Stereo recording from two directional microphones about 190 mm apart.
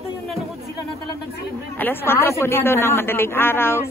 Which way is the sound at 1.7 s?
10° left (ahead or behind).